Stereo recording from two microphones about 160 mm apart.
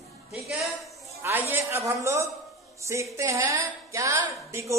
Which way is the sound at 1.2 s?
15° right (ahead or behind).